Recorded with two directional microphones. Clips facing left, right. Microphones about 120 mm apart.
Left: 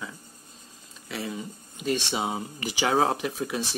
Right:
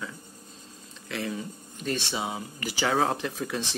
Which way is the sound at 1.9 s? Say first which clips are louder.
Left 3 dB; 15° left (ahead or behind).